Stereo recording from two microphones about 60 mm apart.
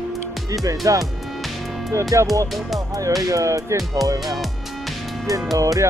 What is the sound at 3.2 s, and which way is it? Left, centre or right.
Music, right.